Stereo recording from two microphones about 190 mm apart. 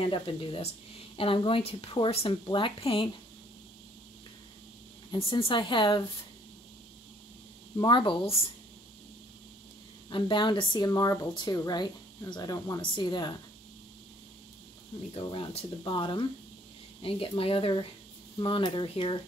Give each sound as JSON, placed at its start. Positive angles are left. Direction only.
{"t": 0.0, "sound": "speech", "side_deg": 25}
{"t": 5.1, "sound": "speech", "side_deg": 25}
{"t": 7.7, "sound": "speech", "side_deg": 25}
{"t": 10.0, "sound": "speech", "side_deg": 25}
{"t": 15.1, "sound": "speech", "side_deg": 30}